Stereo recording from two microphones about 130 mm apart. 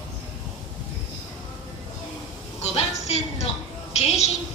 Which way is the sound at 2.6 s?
55° left (ahead or behind).